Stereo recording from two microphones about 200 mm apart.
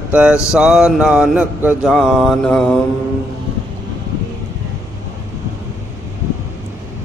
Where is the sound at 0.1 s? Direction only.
5° right (ahead or behind).